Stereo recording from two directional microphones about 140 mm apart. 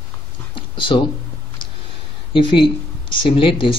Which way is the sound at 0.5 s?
35° left (ahead or behind).